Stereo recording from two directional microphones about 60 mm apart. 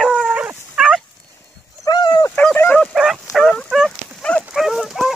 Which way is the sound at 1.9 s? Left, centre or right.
Left.